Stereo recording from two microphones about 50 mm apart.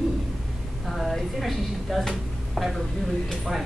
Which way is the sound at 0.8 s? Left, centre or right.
Centre.